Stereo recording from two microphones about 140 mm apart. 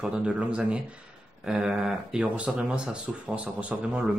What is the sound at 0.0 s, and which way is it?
Speech, 5° right (ahead or behind).